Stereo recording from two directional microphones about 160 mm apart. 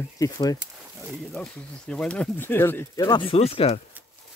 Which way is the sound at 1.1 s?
Centre (ahead or behind).